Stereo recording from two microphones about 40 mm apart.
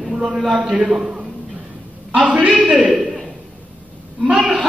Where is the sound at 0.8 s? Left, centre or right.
Centre.